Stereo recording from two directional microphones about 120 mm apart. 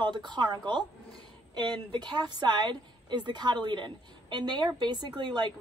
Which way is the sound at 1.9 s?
35° right (ahead or behind).